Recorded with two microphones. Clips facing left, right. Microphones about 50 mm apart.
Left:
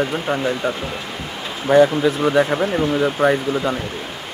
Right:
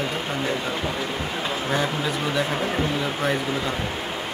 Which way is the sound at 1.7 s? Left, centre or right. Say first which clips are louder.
Left 14 dB; left.